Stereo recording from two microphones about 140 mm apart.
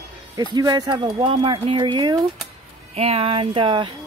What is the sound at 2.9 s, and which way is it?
Speech, 45° right (ahead or behind).